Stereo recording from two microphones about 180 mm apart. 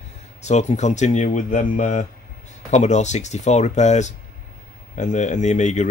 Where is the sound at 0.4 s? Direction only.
40° left (ahead or behind).